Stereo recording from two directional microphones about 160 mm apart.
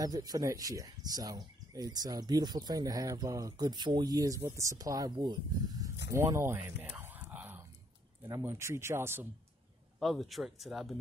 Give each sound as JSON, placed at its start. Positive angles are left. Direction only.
{"t": 0.0, "sound": "speech", "side_deg": -25}
{"t": 6.1, "sound": "a sound", "side_deg": -15}
{"t": 8.2, "sound": "speech", "side_deg": -15}
{"t": 9.9, "sound": "speech", "side_deg": 0}